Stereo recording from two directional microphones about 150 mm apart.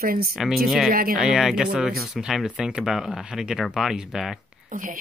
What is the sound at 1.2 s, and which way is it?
Speech, 5° right (ahead or behind).